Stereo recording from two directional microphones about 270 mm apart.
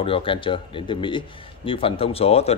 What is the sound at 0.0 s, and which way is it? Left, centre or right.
A man's voice, centre.